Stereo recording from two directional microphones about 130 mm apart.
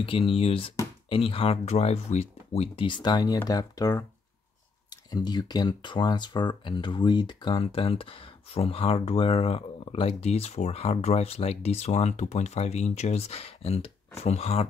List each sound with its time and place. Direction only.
0.0 s speech: 45° left (ahead or behind)
5.1 s speech: 30° left (ahead or behind); by 14.7 s 50° left (ahead or behind)